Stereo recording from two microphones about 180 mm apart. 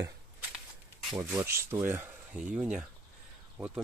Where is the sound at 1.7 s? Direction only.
15° right (ahead or behind).